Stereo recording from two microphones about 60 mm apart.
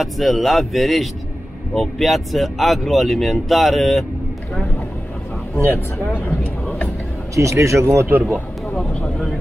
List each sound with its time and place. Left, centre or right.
0.0 s speech: centre
5.7 s speech: left
7.3 s speech: right
8.2 s speech: centre